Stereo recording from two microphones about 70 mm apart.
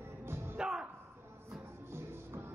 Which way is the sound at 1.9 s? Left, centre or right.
Right.